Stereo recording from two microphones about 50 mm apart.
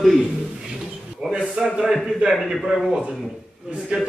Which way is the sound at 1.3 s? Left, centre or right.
Centre.